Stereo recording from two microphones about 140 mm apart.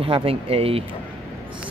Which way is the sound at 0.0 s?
40° right (ahead or behind).